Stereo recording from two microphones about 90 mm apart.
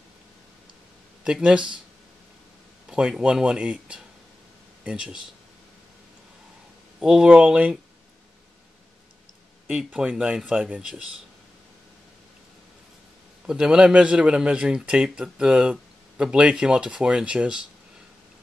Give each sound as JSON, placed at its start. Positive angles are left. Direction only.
{"t": 1.2, "sound": "a man's voice", "side_deg": -10}
{"t": 2.9, "sound": "a man's voice", "side_deg": -10}
{"t": 7.0, "sound": "a man's voice", "side_deg": -10}
{"t": 9.7, "sound": "a man's voice", "side_deg": -10}
{"t": 13.5, "sound": "a man's voice", "side_deg": -10}